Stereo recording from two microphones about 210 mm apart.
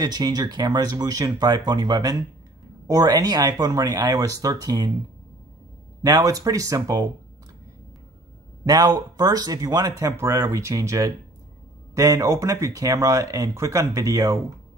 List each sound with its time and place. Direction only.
0.0 s speech: 20° right (ahead or behind)
6.0 s speech: 15° right (ahead or behind)
8.6 s speech: 20° right (ahead or behind)